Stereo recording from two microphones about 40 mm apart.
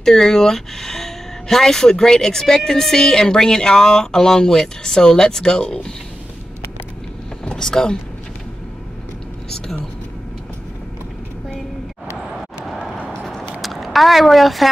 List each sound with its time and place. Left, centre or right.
0.0 s a woman's voice: centre
3.0 s a woman's voice: centre
7.4 s speech: centre
13.4 s a sound: centre